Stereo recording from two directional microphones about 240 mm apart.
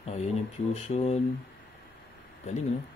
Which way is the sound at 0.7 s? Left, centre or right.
Left.